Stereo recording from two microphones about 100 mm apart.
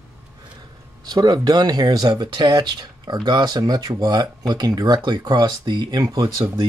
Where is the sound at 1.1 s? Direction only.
40° right (ahead or behind).